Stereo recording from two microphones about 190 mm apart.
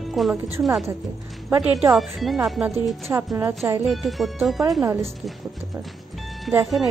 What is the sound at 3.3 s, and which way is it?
Speech, 15° right (ahead or behind).